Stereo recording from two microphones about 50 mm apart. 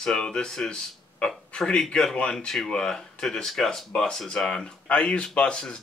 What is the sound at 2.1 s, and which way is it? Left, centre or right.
Speech, left.